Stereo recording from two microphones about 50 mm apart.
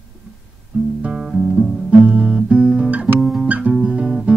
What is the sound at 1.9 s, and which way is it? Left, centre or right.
Guitar, right.